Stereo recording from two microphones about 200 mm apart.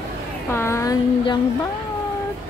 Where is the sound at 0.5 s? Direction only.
10° left (ahead or behind).